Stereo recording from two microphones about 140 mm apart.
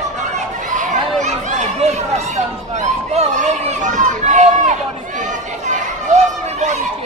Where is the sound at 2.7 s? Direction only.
55° right (ahead or behind).